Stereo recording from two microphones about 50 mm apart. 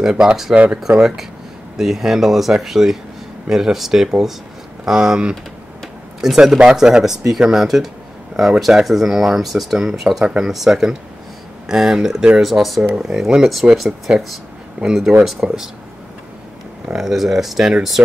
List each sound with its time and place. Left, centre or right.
0.0 s speech: centre
0.9 s speech: right
1.8 s speech: centre
6.3 s speech: centre
14.8 s speech: right
15.2 s speech: centre
16.9 s speech: centre